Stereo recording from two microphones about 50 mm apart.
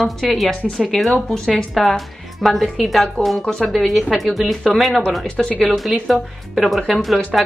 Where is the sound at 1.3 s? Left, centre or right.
Centre.